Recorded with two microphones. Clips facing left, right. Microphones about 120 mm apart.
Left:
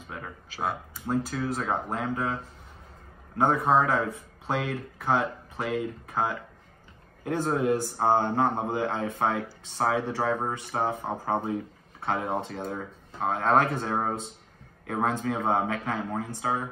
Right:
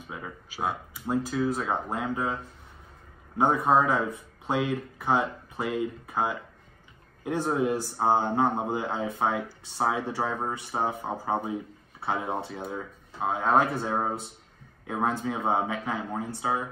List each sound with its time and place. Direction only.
0.1 s speech: 15° right (ahead or behind)
3.3 s speech: 15° right (ahead or behind)
15.2 s speech: 15° right (ahead or behind)